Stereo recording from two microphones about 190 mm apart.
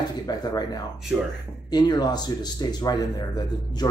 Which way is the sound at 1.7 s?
20° left (ahead or behind).